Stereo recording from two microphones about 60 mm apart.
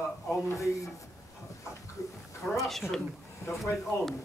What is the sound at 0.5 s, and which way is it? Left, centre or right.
Speech, left.